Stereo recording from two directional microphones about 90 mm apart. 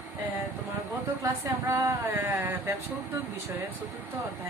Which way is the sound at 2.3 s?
20° right (ahead or behind).